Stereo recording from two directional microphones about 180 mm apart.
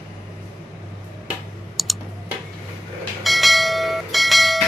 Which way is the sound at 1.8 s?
Centre (ahead or behind).